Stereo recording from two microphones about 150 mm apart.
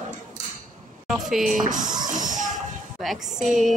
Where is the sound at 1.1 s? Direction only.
5° right (ahead or behind).